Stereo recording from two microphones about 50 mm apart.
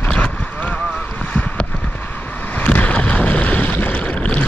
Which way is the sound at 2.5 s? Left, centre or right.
Left.